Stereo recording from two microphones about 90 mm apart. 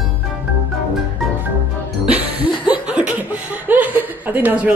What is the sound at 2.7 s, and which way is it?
Chuckle, 15° right (ahead or behind).